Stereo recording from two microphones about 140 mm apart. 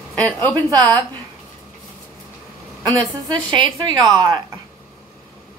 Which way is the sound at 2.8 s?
30° right (ahead or behind).